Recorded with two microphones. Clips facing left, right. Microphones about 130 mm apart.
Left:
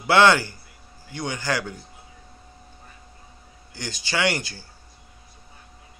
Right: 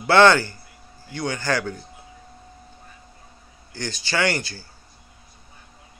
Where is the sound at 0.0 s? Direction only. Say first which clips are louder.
Right 2 dB; 10° left (ahead or behind).